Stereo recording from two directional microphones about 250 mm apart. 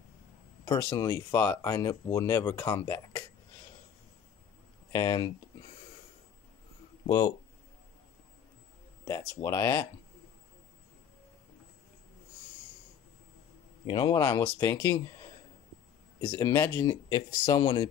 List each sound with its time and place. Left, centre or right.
0.7 s speech: centre
4.9 s speech: centre
7.1 s speech: centre
9.4 s speech: centre
13.8 s speech: centre
16.2 s speech: centre